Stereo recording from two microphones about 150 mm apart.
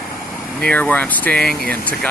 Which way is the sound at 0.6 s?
10° left (ahead or behind).